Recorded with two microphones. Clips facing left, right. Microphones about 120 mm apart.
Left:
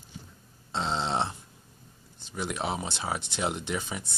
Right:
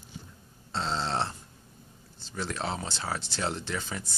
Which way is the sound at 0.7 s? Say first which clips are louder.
Left 1 dB; 20° left (ahead or behind).